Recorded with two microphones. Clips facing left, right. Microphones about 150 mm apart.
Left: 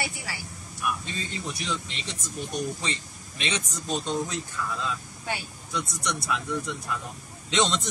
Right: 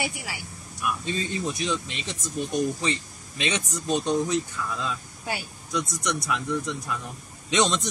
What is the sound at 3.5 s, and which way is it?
Speech, 20° right (ahead or behind).